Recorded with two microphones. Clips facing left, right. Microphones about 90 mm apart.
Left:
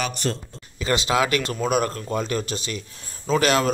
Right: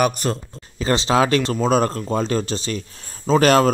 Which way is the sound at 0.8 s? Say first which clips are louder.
Right 4 dB; 30° right (ahead or behind).